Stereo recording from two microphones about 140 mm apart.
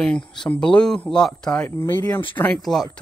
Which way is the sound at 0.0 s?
5° left (ahead or behind).